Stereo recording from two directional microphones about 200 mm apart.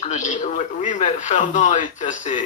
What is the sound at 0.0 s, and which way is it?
Speech, 35° left (ahead or behind).